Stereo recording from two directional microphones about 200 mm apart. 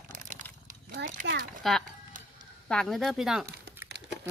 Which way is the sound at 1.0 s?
60° right (ahead or behind).